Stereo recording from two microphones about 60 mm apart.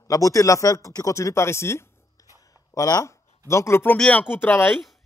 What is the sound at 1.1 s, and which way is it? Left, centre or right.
Speech, left.